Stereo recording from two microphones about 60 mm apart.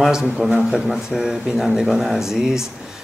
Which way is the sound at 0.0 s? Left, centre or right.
Centre.